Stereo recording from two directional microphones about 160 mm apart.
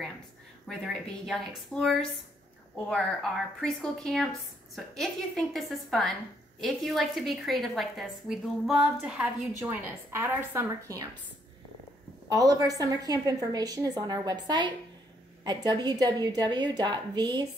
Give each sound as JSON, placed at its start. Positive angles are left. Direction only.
{"t": 0.7, "sound": "a woman's voice", "side_deg": 0}
{"t": 12.3, "sound": "a woman's voice", "side_deg": -20}